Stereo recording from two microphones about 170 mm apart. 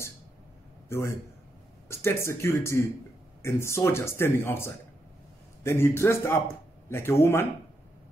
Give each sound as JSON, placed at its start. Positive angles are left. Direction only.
{"t": 0.8, "sound": "a man's voice", "side_deg": 15}